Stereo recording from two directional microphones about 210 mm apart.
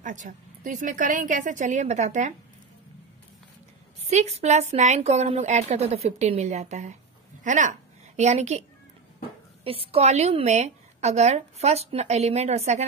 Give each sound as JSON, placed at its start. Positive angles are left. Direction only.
{"t": 0.0, "sound": "a woman's voice", "side_deg": -35}
{"t": 4.1, "sound": "a woman's voice", "side_deg": -30}
{"t": 9.7, "sound": "a woman's voice", "side_deg": -25}